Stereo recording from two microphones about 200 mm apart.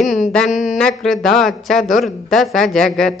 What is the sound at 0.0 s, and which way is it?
Speech, centre (ahead or behind).